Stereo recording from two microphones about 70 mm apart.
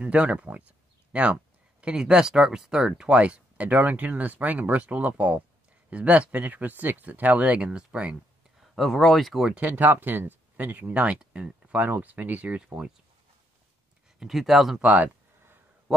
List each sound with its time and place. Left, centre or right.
0.0 s speech: centre
8.5 s speech: centre
9.4 s speech: centre
9.7 s speech: right; by 12.9 s centre
14.2 s speech: centre
14.8 s speech: right